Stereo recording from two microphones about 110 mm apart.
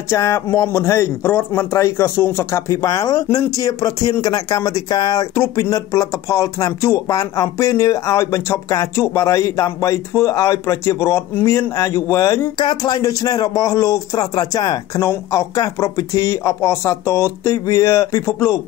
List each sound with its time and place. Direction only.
0.1 s speech: 25° left (ahead or behind)
12.5 s speech: 40° left (ahead or behind)